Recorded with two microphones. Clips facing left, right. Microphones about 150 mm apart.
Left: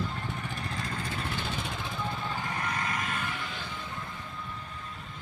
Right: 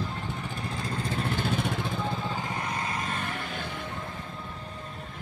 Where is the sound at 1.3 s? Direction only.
55° right (ahead or behind).